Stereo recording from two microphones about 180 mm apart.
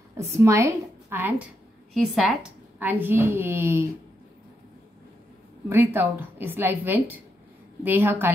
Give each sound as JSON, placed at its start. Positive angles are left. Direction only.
{"t": 0.2, "sound": "a woman's voice", "side_deg": -15}
{"t": 2.0, "sound": "a woman's voice", "side_deg": 0}
{"t": 5.7, "sound": "a woman's voice", "side_deg": -10}